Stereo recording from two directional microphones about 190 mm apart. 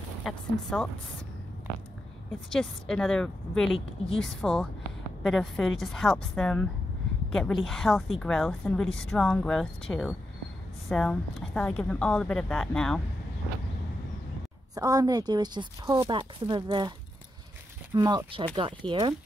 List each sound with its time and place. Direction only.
0.2 s a woman's voice: 5° left (ahead or behind)
2.5 s a woman's voice: 5° left (ahead or behind)
14.8 s speech: 20° right (ahead or behind)
17.9 s speech: 25° right (ahead or behind)